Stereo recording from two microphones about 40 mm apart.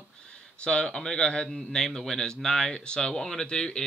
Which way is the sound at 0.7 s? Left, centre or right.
Left.